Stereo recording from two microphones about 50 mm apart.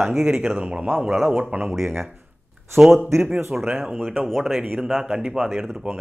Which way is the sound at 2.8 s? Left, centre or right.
Centre.